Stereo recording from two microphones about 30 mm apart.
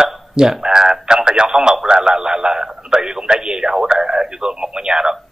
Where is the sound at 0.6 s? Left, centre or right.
Right.